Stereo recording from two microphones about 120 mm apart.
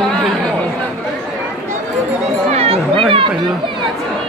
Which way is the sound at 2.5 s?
55° right (ahead or behind).